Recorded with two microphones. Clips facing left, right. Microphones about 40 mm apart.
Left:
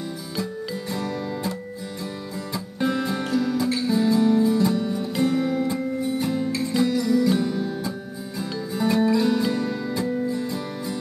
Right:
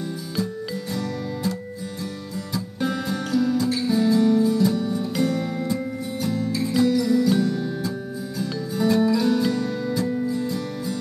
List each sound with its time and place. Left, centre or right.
0.0 s music: left
6.2 s music: left
6.5 s music: centre